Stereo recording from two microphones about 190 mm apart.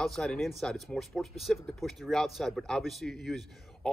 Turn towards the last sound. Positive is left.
turn(degrees=0)  # may be behind; listen again after turning